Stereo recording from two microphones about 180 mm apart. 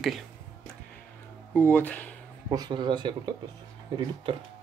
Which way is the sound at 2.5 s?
25° right (ahead or behind).